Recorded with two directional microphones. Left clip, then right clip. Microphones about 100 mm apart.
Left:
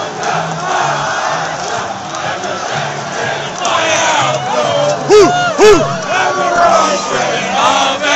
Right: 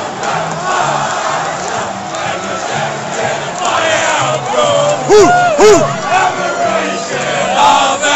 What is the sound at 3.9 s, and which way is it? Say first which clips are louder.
Crowd: even; 20° left (ahead or behind).